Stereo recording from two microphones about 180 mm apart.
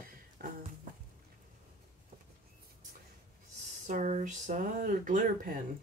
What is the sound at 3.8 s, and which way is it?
Speech, 45° right (ahead or behind).